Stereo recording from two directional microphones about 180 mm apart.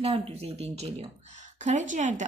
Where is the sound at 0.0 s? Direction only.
35° right (ahead or behind).